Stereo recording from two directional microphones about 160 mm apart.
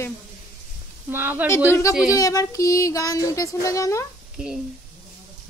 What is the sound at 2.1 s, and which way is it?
Child singing, 20° left (ahead or behind).